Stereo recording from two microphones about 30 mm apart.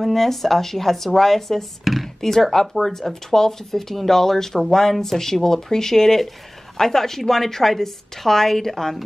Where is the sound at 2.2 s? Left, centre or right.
Centre.